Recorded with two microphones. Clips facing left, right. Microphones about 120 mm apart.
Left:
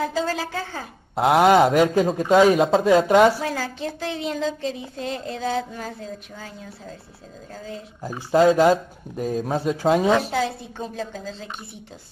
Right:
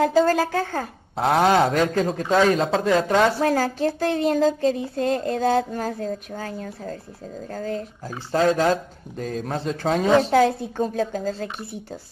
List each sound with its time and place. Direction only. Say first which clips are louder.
0.0 s speech: right 7 dB; 50° right (ahead or behind)
1.1 s a man's voice: left 3 dB; 5° left (ahead or behind)
3.3 s speech: right 6 dB; 50° right (ahead or behind)
8.0 s a man's voice: left 5 dB; 10° left (ahead or behind)
10.8 s speech: right 7 dB; 45° right (ahead or behind)